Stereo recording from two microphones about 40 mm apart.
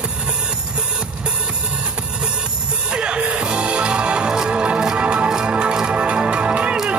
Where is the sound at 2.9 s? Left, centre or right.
Right.